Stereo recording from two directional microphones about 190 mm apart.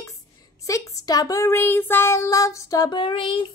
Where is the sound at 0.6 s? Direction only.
15° left (ahead or behind).